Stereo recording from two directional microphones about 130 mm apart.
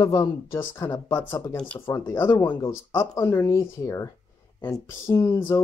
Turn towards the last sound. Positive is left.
turn(degrees=30)  # may be behind; listen again after turning